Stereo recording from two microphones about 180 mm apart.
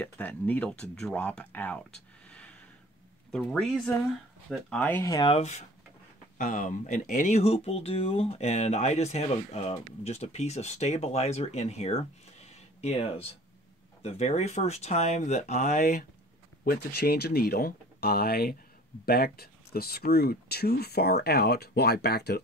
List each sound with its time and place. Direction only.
0.0 s speech: 10° left (ahead or behind)
2.2 s a sound: 5° left (ahead or behind)
3.3 s speech: 5° left (ahead or behind)
5.2 s speech: 35° left (ahead or behind)
16.6 s speech: 60° left (ahead or behind)